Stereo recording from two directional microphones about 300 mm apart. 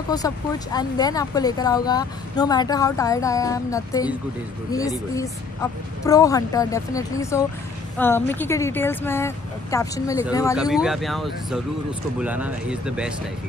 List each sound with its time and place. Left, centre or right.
0.1 s speech: centre
10.7 s speech: centre